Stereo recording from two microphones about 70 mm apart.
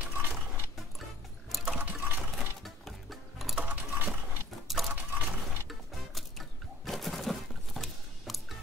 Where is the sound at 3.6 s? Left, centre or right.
Right.